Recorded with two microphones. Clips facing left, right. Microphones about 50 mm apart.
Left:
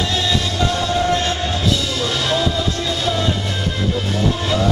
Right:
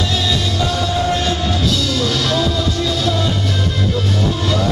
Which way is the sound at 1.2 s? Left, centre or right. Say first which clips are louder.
Right 2 dB; centre.